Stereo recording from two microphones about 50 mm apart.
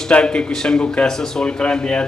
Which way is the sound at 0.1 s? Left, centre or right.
Left.